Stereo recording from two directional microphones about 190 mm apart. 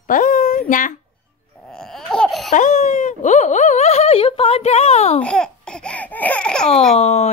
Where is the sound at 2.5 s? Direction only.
40° left (ahead or behind).